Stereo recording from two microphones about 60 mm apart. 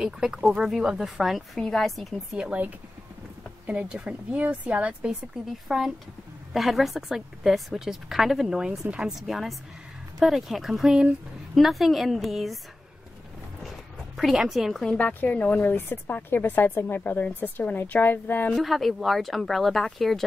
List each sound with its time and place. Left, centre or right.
0.0 s speech: centre
2.3 s speech: centre
3.6 s a woman's voice: centre
5.7 s speech: centre
9.2 s speech: centre
14.1 s a woman's voice: centre
15.0 s speech: left
18.5 s speech: centre